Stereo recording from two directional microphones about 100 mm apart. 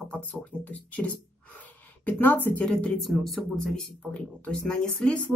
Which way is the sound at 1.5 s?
20° left (ahead or behind).